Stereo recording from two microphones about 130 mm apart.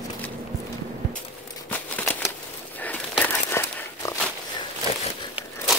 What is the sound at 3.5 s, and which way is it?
Dog, 20° left (ahead or behind).